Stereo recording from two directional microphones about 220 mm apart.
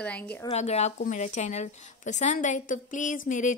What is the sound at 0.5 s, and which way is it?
A woman's voice, 30° left (ahead or behind).